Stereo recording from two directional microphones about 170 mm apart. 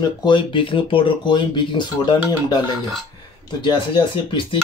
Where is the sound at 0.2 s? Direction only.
30° left (ahead or behind).